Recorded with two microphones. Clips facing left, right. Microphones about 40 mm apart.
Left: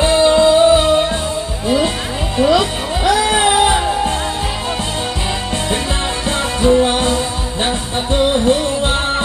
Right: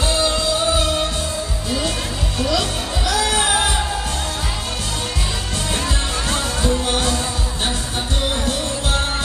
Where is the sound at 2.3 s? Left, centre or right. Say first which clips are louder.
Left 8 dB; left.